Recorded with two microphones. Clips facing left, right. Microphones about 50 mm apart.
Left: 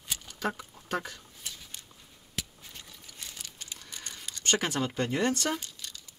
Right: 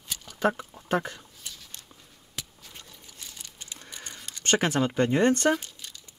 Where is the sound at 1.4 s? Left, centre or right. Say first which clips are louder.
Even; centre.